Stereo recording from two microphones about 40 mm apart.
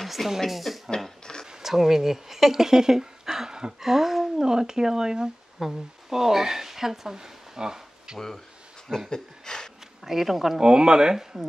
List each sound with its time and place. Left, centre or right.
0.0 s a sound: centre
0.5 s speech: centre
0.8 s a sound: centre
1.4 s speech: centre
9.1 s speech: centre
10.0 s speech: centre
10.6 s speech: centre